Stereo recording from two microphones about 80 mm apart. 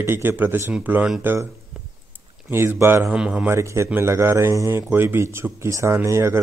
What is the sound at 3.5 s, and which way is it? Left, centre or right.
Speech, right.